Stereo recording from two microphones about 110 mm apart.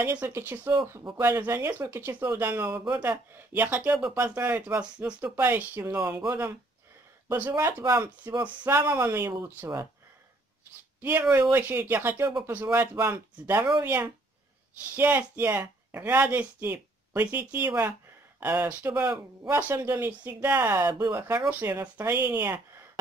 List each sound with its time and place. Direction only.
0.0 s speech: 15° right (ahead or behind)
7.5 s speech: 30° right (ahead or behind)
8.4 s speech: 20° right (ahead or behind)
11.0 s speech: 15° right (ahead or behind)
19.0 s speech: 25° right (ahead or behind)